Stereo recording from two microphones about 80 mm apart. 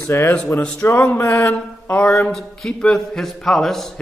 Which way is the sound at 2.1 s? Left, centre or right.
Centre.